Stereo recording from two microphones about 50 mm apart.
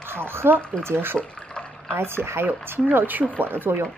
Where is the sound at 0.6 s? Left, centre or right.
Centre.